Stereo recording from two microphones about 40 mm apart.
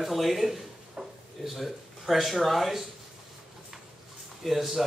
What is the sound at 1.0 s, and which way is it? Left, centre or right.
Drawer open or close, right.